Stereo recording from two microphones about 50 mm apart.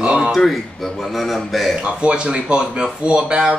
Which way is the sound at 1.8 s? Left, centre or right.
Right.